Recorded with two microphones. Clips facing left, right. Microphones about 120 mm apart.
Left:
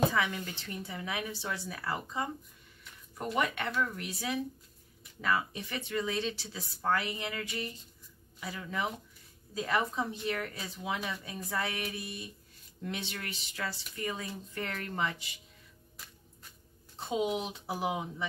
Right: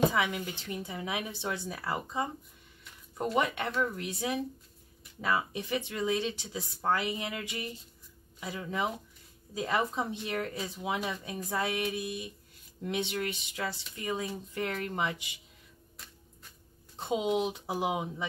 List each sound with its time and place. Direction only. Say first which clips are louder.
0.1 s speech: right 1 dB; 15° right (ahead or behind)
17.1 s speech: right 3 dB; 20° right (ahead or behind)